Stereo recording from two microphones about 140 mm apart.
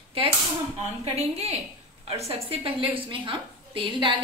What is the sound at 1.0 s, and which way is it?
A woman's voice, 50° right (ahead or behind).